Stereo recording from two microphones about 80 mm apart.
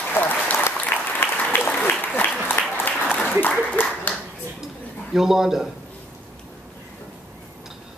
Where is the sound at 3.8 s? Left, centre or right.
Left.